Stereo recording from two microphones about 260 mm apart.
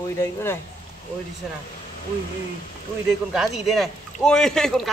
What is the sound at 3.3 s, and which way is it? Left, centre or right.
Speech, centre.